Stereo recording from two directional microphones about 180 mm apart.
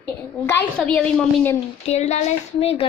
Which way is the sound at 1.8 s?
40° left (ahead or behind).